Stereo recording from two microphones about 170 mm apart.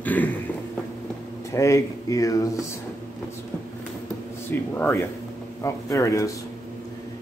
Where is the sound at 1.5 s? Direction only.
20° left (ahead or behind).